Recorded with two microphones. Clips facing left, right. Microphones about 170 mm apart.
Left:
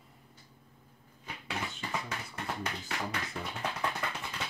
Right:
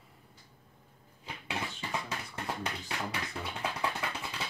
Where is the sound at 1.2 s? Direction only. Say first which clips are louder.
Right 1 dB; 20° right (ahead or behind).